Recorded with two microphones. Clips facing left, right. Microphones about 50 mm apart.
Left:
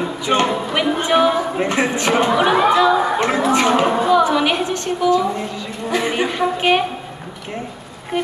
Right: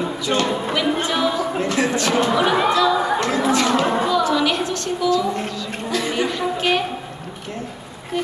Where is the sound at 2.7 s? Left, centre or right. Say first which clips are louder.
Left 3 dB; left.